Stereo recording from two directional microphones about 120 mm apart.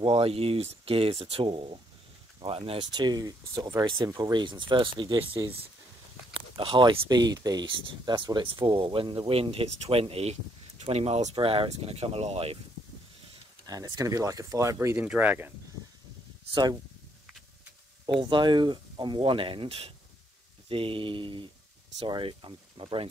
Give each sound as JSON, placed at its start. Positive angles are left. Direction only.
{"t": 0.0, "sound": "speech", "side_deg": -50}
{"t": 11.3, "sound": "speech", "side_deg": -50}
{"t": 13.7, "sound": "speech", "side_deg": -30}
{"t": 15.0, "sound": "speech", "side_deg": -10}
{"t": 18.1, "sound": "speech", "side_deg": -40}